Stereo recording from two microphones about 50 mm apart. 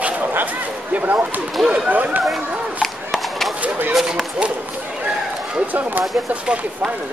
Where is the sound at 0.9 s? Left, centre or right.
Right.